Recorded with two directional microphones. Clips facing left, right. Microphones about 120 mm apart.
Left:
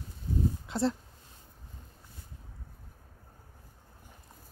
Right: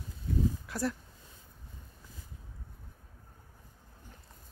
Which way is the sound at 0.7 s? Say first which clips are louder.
Left 4 dB; 25° left (ahead or behind).